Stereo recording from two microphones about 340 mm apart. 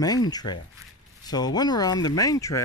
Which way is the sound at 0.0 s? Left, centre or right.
Centre.